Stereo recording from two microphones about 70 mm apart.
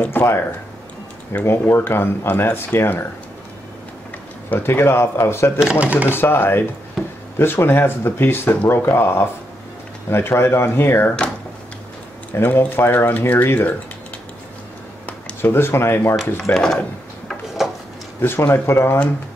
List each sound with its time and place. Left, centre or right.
0.0 s speech: left
1.4 s speech: left
4.5 s speech: left
5.6 s speech: centre
6.0 s speech: left
12.3 s speech: left
15.0 s speech: left
16.5 s speech: left
17.6 s a sound: centre
18.2 s speech: left